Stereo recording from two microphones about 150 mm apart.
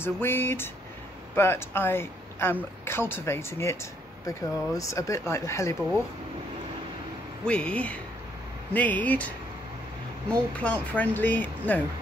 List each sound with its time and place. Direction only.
0.0 s speech: 15° left (ahead or behind)
7.4 s speech: 5° left (ahead or behind)
10.3 s speech: 10° left (ahead or behind)